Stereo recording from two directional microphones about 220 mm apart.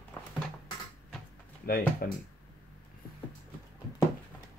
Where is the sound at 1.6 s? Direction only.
40° left (ahead or behind).